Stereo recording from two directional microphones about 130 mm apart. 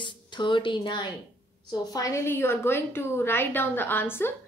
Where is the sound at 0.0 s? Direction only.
35° left (ahead or behind).